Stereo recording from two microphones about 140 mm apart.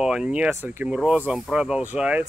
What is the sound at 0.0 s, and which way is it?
Speech, 5° right (ahead or behind).